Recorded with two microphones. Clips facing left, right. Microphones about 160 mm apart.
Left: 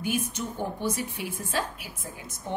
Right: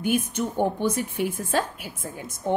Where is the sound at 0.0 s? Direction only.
55° right (ahead or behind).